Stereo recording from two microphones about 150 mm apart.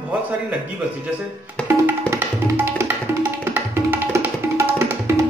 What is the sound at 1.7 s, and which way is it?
Tabla, 15° right (ahead or behind).